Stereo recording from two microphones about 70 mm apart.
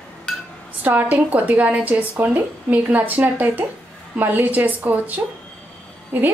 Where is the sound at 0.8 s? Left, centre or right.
Right.